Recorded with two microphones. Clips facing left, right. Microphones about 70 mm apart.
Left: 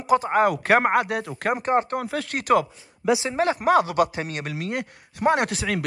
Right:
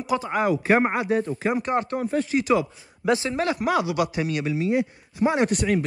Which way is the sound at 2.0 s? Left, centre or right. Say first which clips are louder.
Right 3 dB; left.